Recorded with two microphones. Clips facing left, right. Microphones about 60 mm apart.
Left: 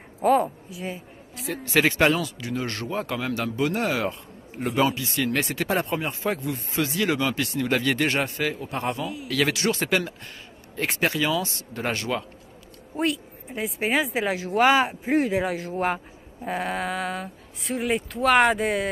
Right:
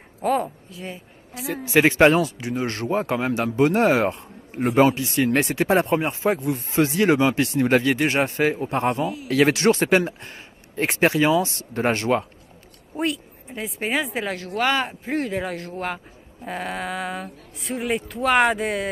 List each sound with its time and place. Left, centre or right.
0.2 s a woman's voice: centre
2.0 s a man's voice: right
2.4 s a man's voice: right
7.8 s a woman's voice: centre
8.3 s a man's voice: right
9.0 s speech: centre
9.3 s a man's voice: right
12.9 s speech: centre